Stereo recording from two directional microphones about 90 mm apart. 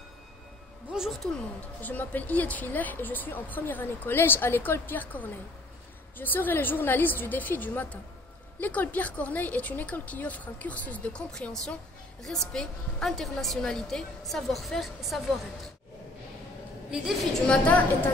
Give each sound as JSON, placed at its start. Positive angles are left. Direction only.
{"t": 0.9, "sound": "speech", "side_deg": -5}
{"t": 1.8, "sound": "speech", "side_deg": 20}
{"t": 17.3, "sound": "speech", "side_deg": 10}